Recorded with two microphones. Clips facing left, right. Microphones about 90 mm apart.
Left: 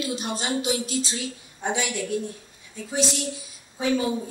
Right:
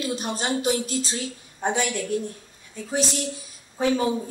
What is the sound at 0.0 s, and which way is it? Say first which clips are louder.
A woman's voice: right 1 dB; 45° right (ahead or behind).